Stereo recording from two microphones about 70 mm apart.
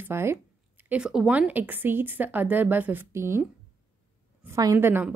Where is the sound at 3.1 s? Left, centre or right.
Right.